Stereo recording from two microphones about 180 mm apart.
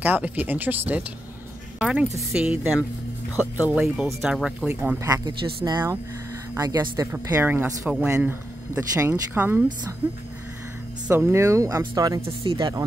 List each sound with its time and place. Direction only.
0.0 s a woman's voice: 10° right (ahead or behind)
11.1 s speech: 10° right (ahead or behind)